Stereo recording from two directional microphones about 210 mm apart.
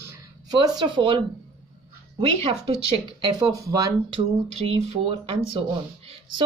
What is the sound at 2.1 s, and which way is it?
Speech, 25° right (ahead or behind).